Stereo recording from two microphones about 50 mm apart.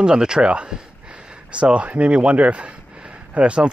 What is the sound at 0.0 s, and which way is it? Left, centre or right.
Speech, centre.